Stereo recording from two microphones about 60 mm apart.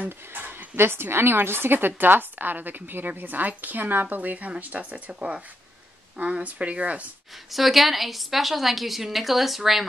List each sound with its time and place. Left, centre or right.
0.0 s speech: right
7.5 s a woman's voice: centre